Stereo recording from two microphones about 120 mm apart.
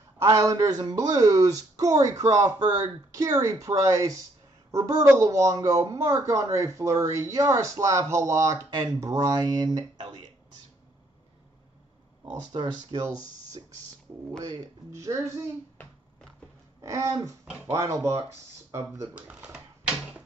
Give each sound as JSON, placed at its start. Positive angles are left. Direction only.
{"t": 0.2, "sound": "a woman's voice", "side_deg": -25}
{"t": 12.5, "sound": "speech", "side_deg": -50}
{"t": 12.9, "sound": "speech", "side_deg": -40}
{"t": 14.4, "sound": "speech", "side_deg": -35}
{"t": 16.8, "sound": "speech", "side_deg": -25}
{"t": 19.1, "sound": "speech", "side_deg": -10}